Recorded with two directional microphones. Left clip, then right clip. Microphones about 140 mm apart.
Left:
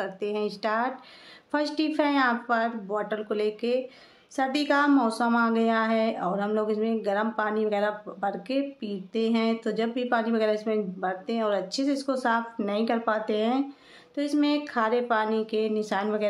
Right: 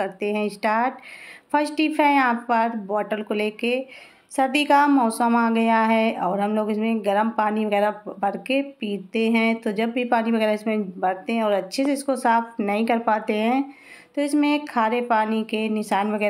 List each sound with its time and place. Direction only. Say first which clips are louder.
0.0 s a woman's voice: right 5 dB; 15° right (ahead or behind)